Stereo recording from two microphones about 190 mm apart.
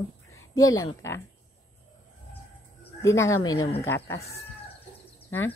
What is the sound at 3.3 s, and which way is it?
Speech, 90° left.